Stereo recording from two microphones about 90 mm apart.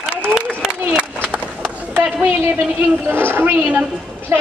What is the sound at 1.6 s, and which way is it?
Run, 25° right (ahead or behind).